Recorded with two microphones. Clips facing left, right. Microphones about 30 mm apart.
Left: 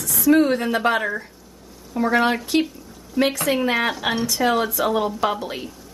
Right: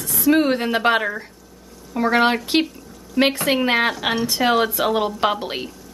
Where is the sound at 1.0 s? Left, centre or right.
Centre.